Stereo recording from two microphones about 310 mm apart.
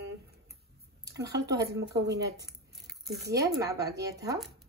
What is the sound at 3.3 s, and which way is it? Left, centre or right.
Speech, centre.